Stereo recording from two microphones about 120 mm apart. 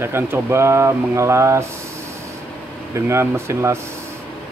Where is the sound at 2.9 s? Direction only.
20° right (ahead or behind).